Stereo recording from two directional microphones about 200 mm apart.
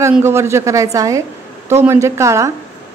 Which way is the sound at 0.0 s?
10° right (ahead or behind).